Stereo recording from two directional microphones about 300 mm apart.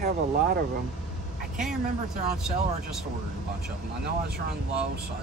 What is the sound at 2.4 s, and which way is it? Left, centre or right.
Speech, centre.